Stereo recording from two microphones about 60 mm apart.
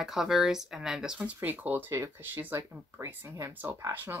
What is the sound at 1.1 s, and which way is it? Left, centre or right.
Speech, right.